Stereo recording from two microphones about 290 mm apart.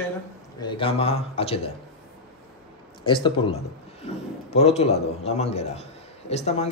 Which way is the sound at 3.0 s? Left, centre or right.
Centre.